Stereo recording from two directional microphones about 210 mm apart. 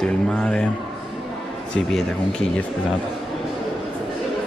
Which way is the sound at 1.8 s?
5° left (ahead or behind).